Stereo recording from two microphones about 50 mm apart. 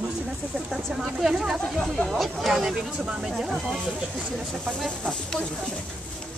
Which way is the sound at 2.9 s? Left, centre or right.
Centre.